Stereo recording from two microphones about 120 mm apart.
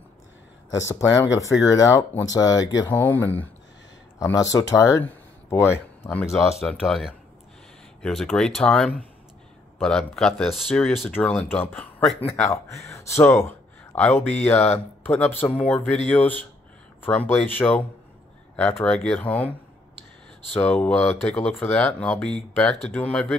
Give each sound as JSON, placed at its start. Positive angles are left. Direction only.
{"t": 0.7, "sound": "speech", "side_deg": 25}
{"t": 2.9, "sound": "speech", "side_deg": 15}
{"t": 4.2, "sound": "speech", "side_deg": 25}
{"t": 6.6, "sound": "speech", "side_deg": 0}
{"t": 20.5, "sound": "speech", "side_deg": 10}